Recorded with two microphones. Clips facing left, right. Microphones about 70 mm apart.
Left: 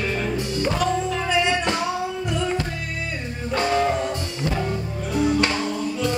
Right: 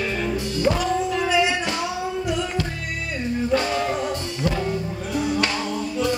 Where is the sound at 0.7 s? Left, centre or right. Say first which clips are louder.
Even; centre.